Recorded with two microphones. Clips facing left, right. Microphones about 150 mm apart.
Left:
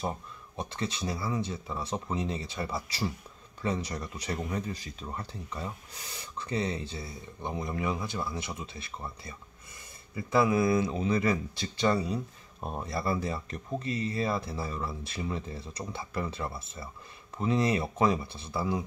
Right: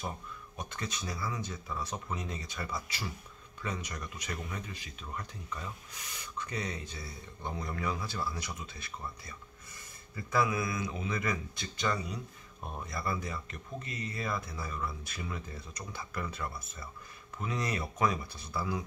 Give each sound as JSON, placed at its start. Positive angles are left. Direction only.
{"t": 0.6, "sound": "speech", "side_deg": 30}